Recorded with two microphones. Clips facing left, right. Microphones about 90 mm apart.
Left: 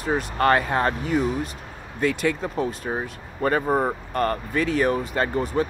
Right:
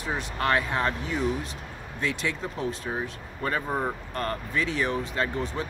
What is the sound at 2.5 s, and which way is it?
Speech, 5° left (ahead or behind).